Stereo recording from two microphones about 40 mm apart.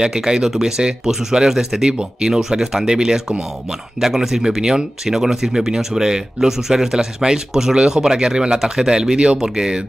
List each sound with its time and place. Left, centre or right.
0.0 s speech: centre